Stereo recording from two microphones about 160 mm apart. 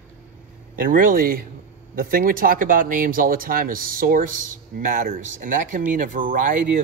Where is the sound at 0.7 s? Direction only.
60° right (ahead or behind).